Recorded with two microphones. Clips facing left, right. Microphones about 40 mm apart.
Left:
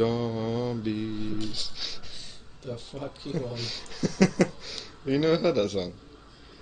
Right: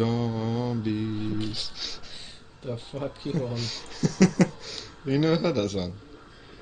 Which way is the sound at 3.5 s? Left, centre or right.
Centre.